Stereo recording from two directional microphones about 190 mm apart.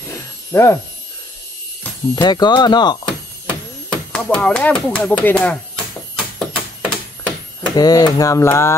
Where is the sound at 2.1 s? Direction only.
20° left (ahead or behind).